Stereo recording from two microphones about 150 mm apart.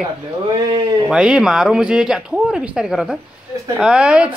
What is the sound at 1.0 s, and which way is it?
A man's voice, 5° right (ahead or behind).